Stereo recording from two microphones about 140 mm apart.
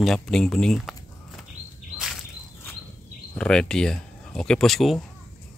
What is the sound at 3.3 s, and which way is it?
Speech, 5° left (ahead or behind).